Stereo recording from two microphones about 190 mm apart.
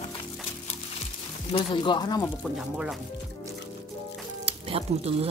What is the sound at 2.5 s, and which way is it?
Speech, 5° right (ahead or behind).